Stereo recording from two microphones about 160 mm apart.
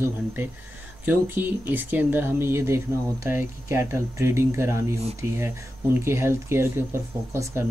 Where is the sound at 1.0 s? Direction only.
15° right (ahead or behind).